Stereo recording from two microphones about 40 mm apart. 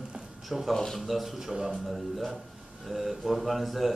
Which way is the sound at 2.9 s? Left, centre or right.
Centre.